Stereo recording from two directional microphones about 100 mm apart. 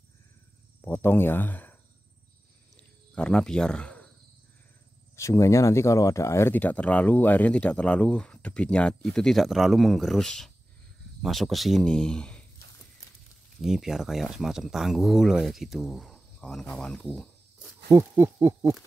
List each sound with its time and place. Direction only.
0.8 s speech: 20° left (ahead or behind)
3.2 s speech: 10° left (ahead or behind)
5.1 s speech: 30° left (ahead or behind); by 12.4 s 10° left (ahead or behind)
13.6 s speech: 5° right (ahead or behind)
16.3 s cricket: 5° left (ahead or behind)
16.7 s speech: 10° left (ahead or behind)
17.9 s speech: 30° right (ahead or behind)